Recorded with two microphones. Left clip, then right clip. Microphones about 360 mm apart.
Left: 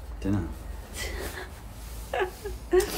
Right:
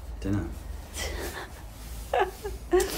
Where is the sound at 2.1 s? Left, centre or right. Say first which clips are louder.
Right 3 dB; centre.